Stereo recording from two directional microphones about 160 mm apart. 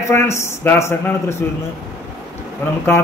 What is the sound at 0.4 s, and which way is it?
A man's voice, 15° left (ahead or behind).